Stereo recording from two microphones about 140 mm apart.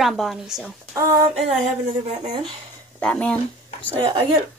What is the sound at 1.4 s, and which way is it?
Speech, 50° right (ahead or behind).